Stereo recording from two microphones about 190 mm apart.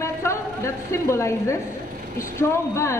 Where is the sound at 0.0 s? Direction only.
15° left (ahead or behind).